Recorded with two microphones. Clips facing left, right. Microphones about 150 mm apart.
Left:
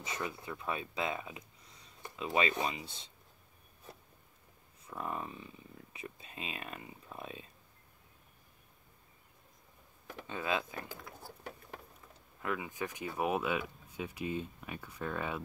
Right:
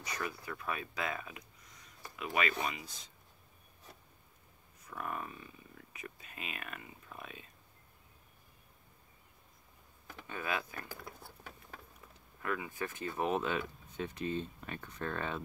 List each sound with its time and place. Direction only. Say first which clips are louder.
0.0 s speech: left 1 dB; 25° left (ahead or behind)
4.8 s speech: left 1 dB; 25° left (ahead or behind)
10.2 s speech: left 3 dB; 20° left (ahead or behind)
12.4 s speech: left 1 dB; 15° left (ahead or behind)